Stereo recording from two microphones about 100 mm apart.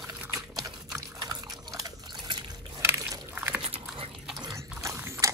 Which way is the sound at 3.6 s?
65° right (ahead or behind).